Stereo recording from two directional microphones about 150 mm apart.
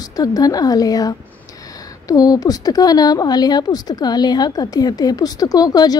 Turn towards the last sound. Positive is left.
turn(degrees=25)  # may be behind; listen again after turning